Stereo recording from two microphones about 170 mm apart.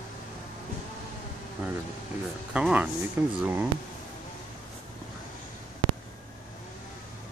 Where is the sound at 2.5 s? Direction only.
5° right (ahead or behind).